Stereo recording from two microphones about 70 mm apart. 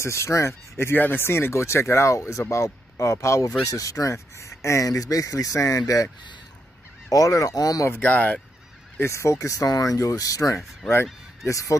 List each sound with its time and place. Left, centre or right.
0.0 s speech: left
7.1 s speech: left
8.0 s fowl: left
9.0 s speech: left